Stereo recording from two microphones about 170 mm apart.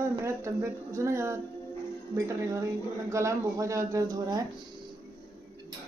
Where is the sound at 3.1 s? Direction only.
15° right (ahead or behind).